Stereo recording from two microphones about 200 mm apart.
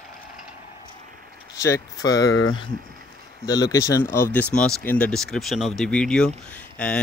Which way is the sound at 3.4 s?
20° left (ahead or behind).